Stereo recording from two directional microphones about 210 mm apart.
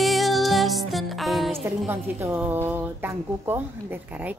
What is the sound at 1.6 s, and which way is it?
Speech, 10° right (ahead or behind).